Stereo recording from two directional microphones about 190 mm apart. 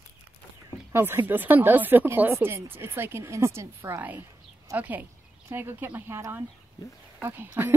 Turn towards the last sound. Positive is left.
turn(degrees=-10)  # may be behind; listen again after turning